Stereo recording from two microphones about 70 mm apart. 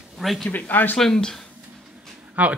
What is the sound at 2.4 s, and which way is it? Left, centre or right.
Speech, right.